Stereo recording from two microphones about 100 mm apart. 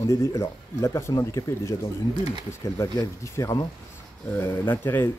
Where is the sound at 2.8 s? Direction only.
30° left (ahead or behind).